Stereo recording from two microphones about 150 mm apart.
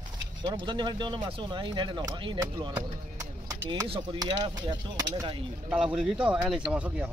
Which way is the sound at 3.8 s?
40° right (ahead or behind).